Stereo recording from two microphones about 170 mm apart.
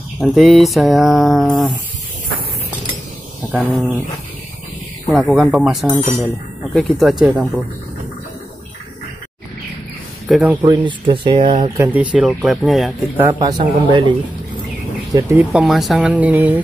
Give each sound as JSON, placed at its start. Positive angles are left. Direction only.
{"t": 0.2, "sound": "speech", "side_deg": 0}
{"t": 5.3, "sound": "speech", "side_deg": -5}
{"t": 10.2, "sound": "speech", "side_deg": -5}
{"t": 10.6, "sound": "speech", "side_deg": -30}
{"t": 11.7, "sound": "speech", "side_deg": -15}
{"t": 13.2, "sound": "speech", "side_deg": -20}
{"t": 15.1, "sound": "speech", "side_deg": -5}